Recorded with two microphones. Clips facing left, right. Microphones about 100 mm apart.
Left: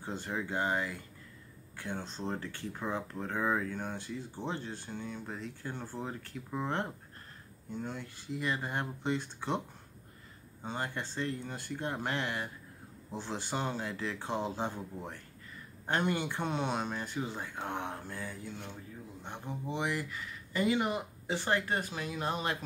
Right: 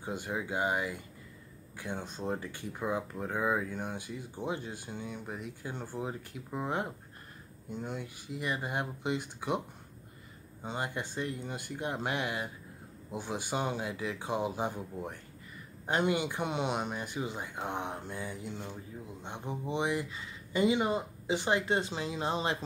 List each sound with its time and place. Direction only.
0.0 s speech: 15° right (ahead or behind)
10.6 s speech: 15° right (ahead or behind)